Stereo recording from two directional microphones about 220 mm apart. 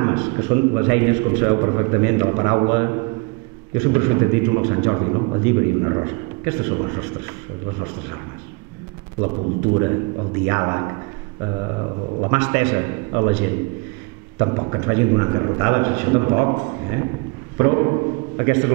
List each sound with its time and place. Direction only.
0.0 s a man's voice: 20° right (ahead or behind)
10.4 s a man's voice: 20° right (ahead or behind)
12.2 s a man's voice: 15° right (ahead or behind)